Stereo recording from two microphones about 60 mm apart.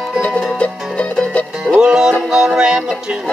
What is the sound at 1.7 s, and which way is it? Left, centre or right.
Music, centre.